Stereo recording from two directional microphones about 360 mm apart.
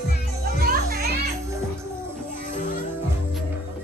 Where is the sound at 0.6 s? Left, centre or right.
Right.